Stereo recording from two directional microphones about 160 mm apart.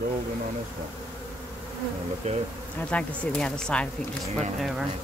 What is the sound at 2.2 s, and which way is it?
Bee, 45° right (ahead or behind).